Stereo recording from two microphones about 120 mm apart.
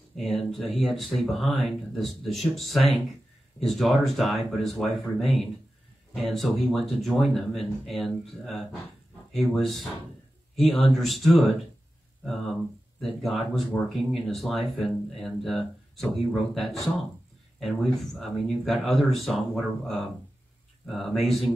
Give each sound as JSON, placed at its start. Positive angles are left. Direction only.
{"t": 0.1, "sound": "speech", "side_deg": 0}
{"t": 10.5, "sound": "a sound", "side_deg": 0}
{"t": 10.9, "sound": "speech", "side_deg": 0}
{"t": 13.0, "sound": "speech", "side_deg": 0}